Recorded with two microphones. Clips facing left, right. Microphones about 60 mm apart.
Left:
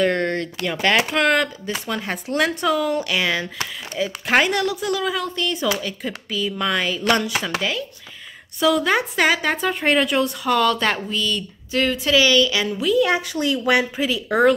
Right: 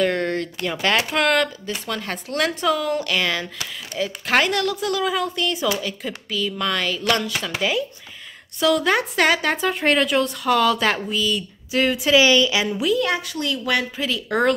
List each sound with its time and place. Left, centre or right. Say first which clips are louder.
0.0 s a sound: left 1 dB; centre
0.8 s speech: left 2 dB; centre
8.5 s speech: even; centre
12.8 s speech: left 4 dB; centre
13.1 s speech: left 3 dB; left; by 14.5 s centre